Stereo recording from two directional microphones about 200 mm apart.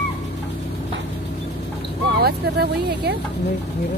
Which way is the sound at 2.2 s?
50° right (ahead or behind).